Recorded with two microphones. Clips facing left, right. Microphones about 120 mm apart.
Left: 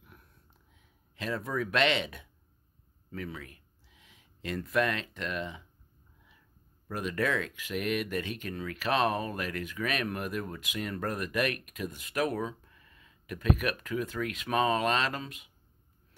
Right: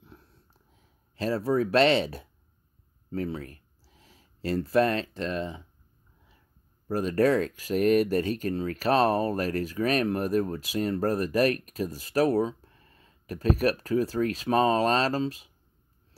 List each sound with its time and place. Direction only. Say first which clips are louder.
0.0 s a sound: right 5 dB; 30° right (ahead or behind)
3.1 s speech: right 8 dB; 35° right (ahead or behind)
6.9 s speech: right 8 dB; 35° right (ahead or behind)